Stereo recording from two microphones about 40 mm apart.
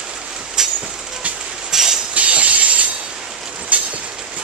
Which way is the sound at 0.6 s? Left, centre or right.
Centre.